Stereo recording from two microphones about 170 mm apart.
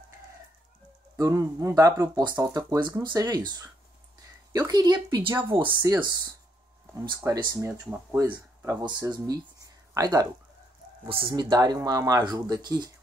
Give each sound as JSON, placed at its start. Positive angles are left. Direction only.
{"t": 1.1, "sound": "speech", "side_deg": -20}